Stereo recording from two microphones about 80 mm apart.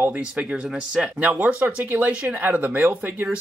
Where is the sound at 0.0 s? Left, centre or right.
Centre.